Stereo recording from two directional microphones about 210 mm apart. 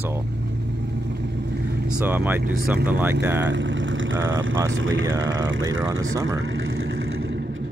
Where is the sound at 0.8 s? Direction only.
55° right (ahead or behind).